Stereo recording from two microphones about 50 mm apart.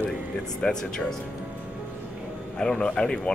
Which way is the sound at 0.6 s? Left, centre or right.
Centre.